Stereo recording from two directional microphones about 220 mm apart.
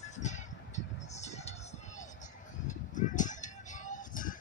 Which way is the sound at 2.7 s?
35° left (ahead or behind).